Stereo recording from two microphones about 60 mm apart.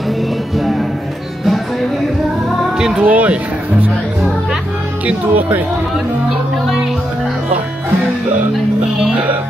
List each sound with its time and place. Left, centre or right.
2.8 s speech: centre
3.1 s speech: right
5.0 s speech: right